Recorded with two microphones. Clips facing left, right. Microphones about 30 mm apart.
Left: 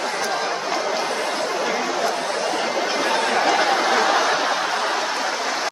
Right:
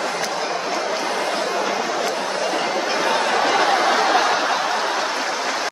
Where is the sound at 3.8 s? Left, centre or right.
Centre.